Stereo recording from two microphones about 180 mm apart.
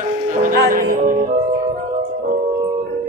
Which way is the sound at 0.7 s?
50° right (ahead or behind).